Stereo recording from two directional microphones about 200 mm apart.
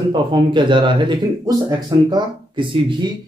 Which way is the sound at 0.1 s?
25° right (ahead or behind).